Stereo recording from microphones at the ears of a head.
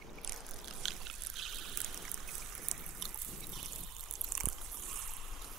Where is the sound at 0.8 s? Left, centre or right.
Right.